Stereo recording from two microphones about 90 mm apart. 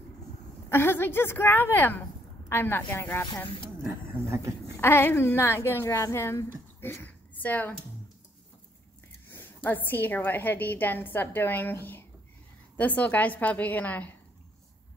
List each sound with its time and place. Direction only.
0.7 s a woman's voice: 25° left (ahead or behind)
4.7 s a woman's voice: 25° left (ahead or behind)
9.3 s a woman's voice: 20° left (ahead or behind)